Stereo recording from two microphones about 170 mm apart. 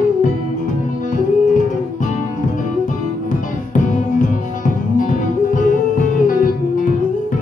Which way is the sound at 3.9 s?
50° left (ahead or behind).